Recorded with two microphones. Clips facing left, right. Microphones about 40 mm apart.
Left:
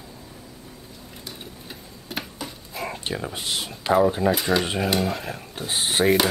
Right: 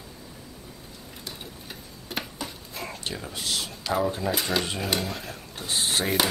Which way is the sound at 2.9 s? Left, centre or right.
Left.